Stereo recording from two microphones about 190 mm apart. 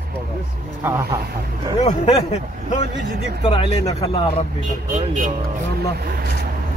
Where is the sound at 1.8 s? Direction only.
35° left (ahead or behind).